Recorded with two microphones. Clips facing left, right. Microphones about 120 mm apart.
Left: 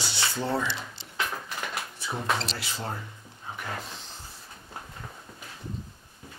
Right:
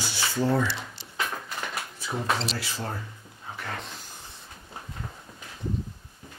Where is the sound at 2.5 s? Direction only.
20° left (ahead or behind).